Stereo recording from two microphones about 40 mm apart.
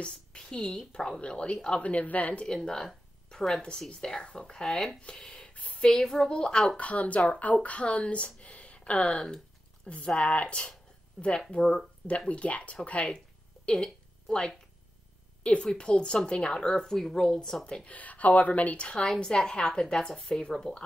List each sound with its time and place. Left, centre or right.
0.4 s a woman's voice: centre
1.8 s speech: left
2.4 s a woman's voice: centre
4.6 s a woman's voice: centre
5.0 s speech: centre
5.4 s a sound: left
5.9 s a woman's voice: centre
6.8 s speech: left
13.7 s a woman's voice: centre
15.4 s a woman's voice: left; by 17.6 s centre
17.8 s speech: left
19.2 s a woman's voice: centre